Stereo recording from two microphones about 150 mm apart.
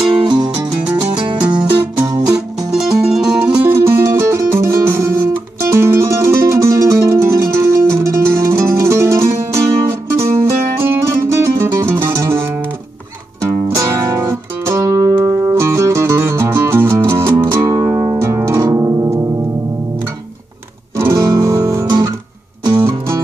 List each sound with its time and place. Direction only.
0.0 s music: 35° right (ahead or behind)
2.3 s music: 5° right (ahead or behind)
13.7 s music: 20° right (ahead or behind)
21.0 s guitar: 25° right (ahead or behind)